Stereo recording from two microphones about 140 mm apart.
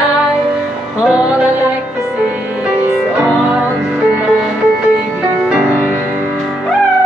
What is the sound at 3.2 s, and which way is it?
Music, 10° right (ahead or behind).